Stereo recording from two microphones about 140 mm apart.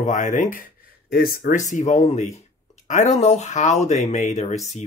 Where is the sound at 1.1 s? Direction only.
90° left; by 4.8 s 55° left (ahead or behind).